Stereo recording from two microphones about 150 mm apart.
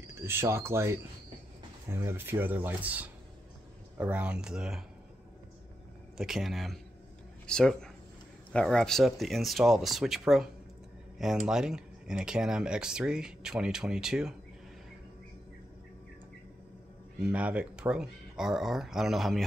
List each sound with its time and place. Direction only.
0.0 s speech: 15° right (ahead or behind)
6.1 s speech: centre (ahead or behind)
17.2 s speech: 10° right (ahead or behind)